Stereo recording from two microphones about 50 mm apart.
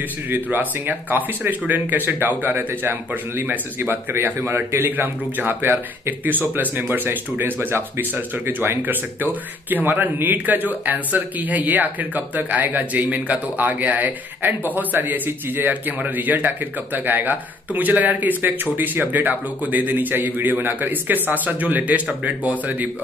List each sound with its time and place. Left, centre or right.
0.3 s a man's voice: right